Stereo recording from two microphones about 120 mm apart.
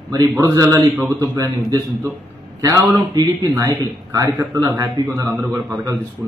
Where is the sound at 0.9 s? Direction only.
15° right (ahead or behind).